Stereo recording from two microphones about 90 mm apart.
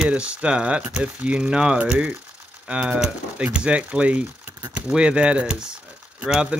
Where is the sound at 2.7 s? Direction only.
10° right (ahead or behind).